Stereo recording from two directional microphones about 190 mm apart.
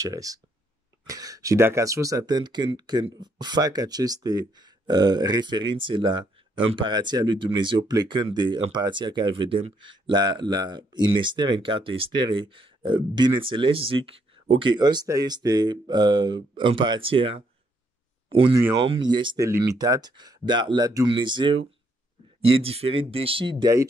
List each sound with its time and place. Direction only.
0.0 s speech: 15° right (ahead or behind)
18.8 s speech: 25° right (ahead or behind)